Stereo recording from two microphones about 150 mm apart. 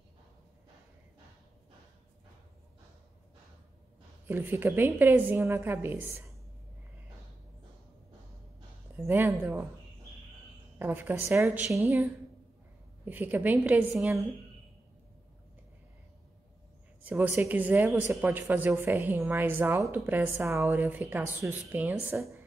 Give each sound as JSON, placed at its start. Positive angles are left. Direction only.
{"t": 4.3, "sound": "speech", "side_deg": -15}
{"t": 8.9, "sound": "speech", "side_deg": -15}
{"t": 10.8, "sound": "speech", "side_deg": -15}
{"t": 17.0, "sound": "speech", "side_deg": -10}